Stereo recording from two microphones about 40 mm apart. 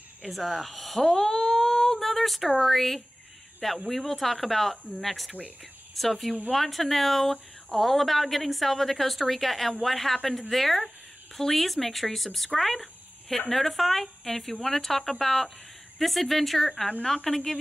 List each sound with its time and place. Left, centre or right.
0.2 s a woman's voice: centre
1.2 s a sound: centre
3.9 s a woman's voice: centre